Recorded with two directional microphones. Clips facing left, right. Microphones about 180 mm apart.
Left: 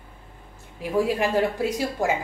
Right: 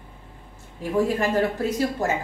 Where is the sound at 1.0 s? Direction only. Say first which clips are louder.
Right 1 dB; 10° left (ahead or behind).